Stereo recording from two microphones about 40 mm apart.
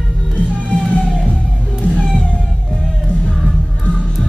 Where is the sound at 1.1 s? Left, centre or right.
Centre.